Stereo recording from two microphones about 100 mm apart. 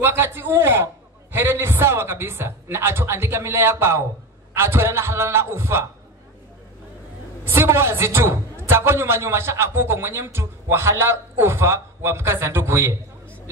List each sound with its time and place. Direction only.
0.0 s a man's voice: 25° right (ahead or behind)
7.4 s a man's voice: 25° right (ahead or behind)